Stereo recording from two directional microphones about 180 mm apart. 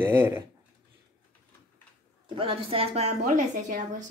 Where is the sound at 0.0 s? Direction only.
10° right (ahead or behind).